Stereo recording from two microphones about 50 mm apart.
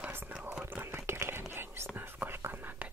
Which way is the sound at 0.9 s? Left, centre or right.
Right.